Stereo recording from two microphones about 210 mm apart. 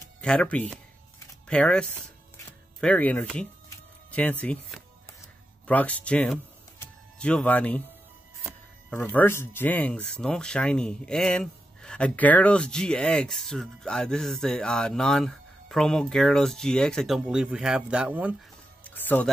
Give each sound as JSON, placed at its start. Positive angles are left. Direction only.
{"t": 0.2, "sound": "speech", "side_deg": 5}
{"t": 2.3, "sound": "music", "side_deg": 5}
{"t": 5.7, "sound": "speech", "side_deg": 5}
{"t": 8.9, "sound": "speech", "side_deg": 10}
{"t": 18.9, "sound": "music", "side_deg": 10}